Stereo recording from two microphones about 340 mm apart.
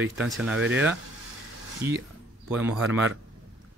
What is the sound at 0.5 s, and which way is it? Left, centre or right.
Speech, right.